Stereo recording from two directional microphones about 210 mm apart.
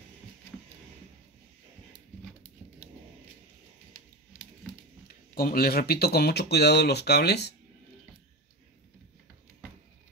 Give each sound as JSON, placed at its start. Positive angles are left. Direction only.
{"t": 5.0, "sound": "speech", "side_deg": 45}